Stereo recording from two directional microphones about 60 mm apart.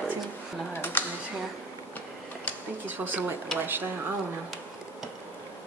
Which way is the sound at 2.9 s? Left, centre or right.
Right.